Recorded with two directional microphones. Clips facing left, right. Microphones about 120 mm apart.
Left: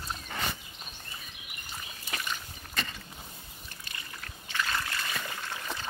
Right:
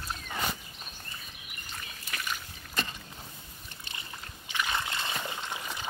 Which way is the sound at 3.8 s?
20° right (ahead or behind).